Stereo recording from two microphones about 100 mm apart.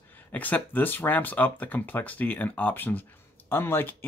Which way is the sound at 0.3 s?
15° left (ahead or behind).